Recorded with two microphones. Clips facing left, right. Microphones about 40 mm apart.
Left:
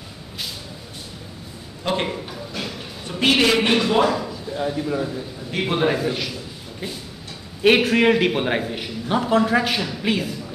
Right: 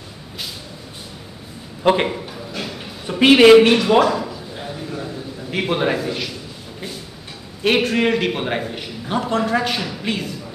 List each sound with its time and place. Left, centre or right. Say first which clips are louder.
1.8 s a man's voice: right 7 dB; right
2.0 s a sound: right 2 dB; centre
3.2 s a man's voice: right 6 dB; centre
3.6 s a man's voice: right 4 dB; centre
4.0 s a sound: right 2 dB; centre
5.5 s a man's voice: right 1 dB; centre
7.6 s a man's voice: left 2 dB; centre